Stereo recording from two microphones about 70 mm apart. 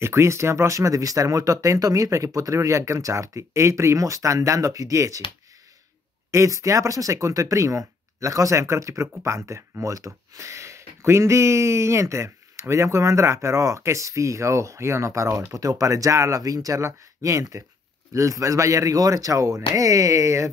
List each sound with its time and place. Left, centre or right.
0.0 s speech: right
6.3 s speech: right
15.5 s speech: right